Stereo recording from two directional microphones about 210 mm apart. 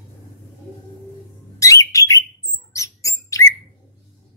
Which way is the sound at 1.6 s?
15° left (ahead or behind).